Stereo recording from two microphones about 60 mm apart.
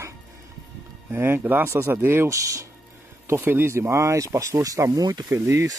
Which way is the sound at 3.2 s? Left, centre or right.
Right.